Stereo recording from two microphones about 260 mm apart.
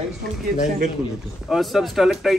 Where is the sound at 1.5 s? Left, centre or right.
Centre.